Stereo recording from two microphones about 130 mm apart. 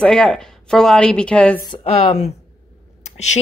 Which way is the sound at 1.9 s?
55° left (ahead or behind).